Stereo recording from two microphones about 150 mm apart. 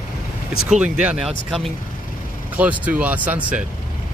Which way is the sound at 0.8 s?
5° right (ahead or behind).